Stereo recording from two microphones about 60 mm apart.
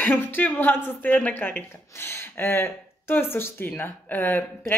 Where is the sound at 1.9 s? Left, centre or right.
Left.